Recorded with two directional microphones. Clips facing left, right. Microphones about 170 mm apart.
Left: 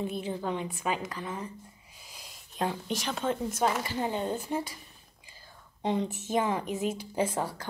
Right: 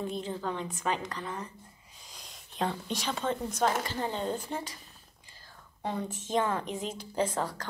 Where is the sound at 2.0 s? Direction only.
5° left (ahead or behind).